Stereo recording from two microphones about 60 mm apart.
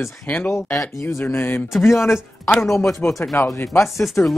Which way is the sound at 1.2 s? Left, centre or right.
Left.